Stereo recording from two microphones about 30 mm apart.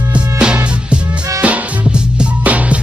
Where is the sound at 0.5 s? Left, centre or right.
Right.